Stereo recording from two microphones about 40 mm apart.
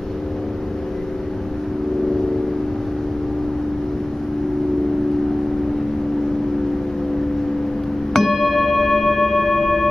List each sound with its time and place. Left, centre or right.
8.1 s singing bowl: centre